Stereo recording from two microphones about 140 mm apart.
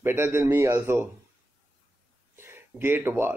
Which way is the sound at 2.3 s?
15° right (ahead or behind).